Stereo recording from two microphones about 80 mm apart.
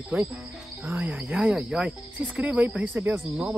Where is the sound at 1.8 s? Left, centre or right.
Centre.